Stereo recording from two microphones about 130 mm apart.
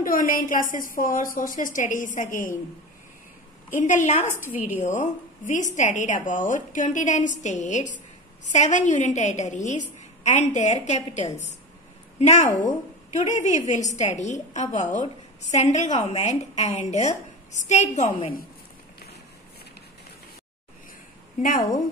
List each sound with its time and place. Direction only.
0.0 s a woman's voice: 90° left
3.8 s a woman's voice: 70° left (ahead or behind)
4.4 s a woman's voice: 15° right (ahead or behind)
4.8 s a woman's voice: 70° left (ahead or behind)
21.4 s a woman's voice: 90° left